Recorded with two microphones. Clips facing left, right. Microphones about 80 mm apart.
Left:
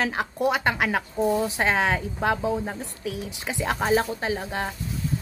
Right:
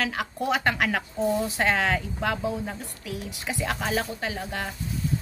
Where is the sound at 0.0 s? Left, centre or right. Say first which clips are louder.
Left 4 dB; left.